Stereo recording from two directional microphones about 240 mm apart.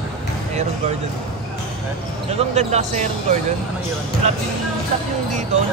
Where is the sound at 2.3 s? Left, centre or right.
Right.